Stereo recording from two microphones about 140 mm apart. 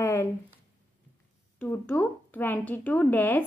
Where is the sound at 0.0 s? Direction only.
20° left (ahead or behind).